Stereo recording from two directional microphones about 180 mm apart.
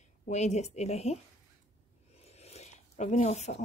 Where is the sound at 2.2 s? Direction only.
35° left (ahead or behind).